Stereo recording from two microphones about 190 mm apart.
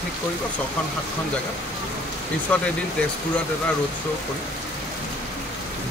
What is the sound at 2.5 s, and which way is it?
Speech, 5° left (ahead or behind).